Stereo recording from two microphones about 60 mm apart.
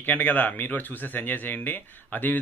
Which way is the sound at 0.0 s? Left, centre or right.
Left.